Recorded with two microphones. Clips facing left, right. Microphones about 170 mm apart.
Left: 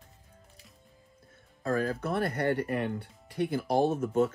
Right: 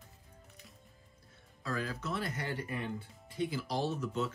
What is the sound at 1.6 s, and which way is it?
Speech, 50° left (ahead or behind).